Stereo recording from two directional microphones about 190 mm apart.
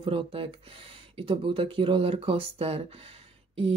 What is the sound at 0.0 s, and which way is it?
Speech, 30° right (ahead or behind).